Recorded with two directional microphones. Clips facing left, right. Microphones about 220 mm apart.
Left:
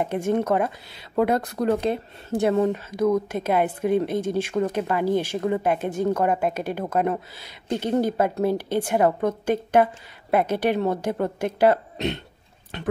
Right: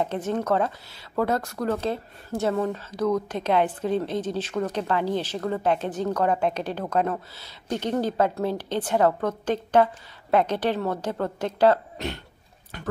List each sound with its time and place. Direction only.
0.0 s a woman's voice: 10° left (ahead or behind)
3.3 s a woman's voice: 10° left (ahead or behind)